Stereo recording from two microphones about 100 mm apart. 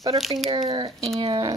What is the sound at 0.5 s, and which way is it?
Speech, 50° right (ahead or behind).